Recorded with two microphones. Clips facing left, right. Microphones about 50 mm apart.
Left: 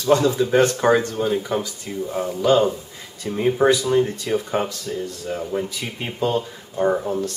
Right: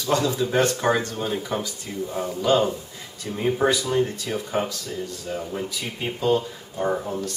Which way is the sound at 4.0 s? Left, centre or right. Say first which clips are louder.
Left 4 dB; centre.